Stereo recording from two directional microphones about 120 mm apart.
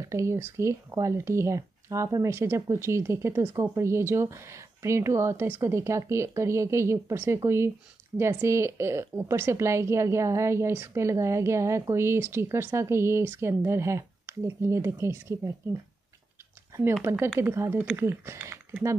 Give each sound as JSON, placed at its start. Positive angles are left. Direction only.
{"t": 0.1, "sound": "a woman's voice", "side_deg": -25}
{"t": 17.1, "sound": "a woman's voice", "side_deg": -25}
{"t": 17.7, "sound": "speech", "side_deg": -10}
{"t": 18.0, "sound": "a woman's voice", "side_deg": -20}